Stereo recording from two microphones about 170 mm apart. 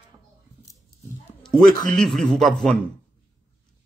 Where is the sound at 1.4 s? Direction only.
Centre (ahead or behind).